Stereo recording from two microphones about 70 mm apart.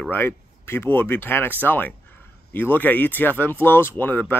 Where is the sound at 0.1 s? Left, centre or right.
Left.